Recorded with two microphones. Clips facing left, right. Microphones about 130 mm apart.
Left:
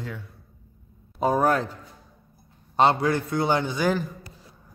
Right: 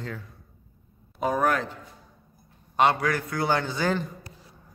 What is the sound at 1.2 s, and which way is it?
A man's voice, 35° left (ahead or behind).